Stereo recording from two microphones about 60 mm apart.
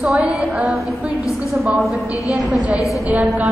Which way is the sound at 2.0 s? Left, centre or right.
Left.